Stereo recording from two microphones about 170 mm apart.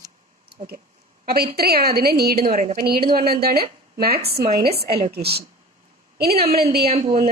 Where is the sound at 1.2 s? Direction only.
65° right (ahead or behind).